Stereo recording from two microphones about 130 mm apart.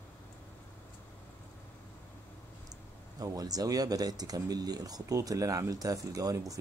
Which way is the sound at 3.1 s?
30° right (ahead or behind).